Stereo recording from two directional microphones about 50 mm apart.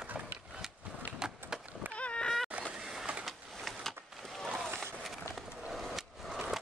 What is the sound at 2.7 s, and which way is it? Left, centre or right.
Vehicle, centre.